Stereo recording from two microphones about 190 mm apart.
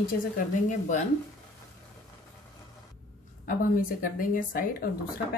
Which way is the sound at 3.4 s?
45° left (ahead or behind).